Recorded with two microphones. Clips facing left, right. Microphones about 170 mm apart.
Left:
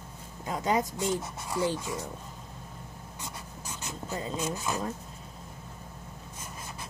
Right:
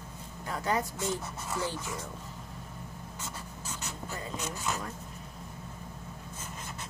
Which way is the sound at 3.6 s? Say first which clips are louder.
Left 3 dB; 15° left (ahead or behind).